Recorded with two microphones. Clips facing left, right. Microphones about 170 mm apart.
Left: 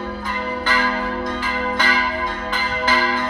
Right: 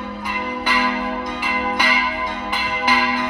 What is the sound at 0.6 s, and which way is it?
Church bell, 10° right (ahead or behind).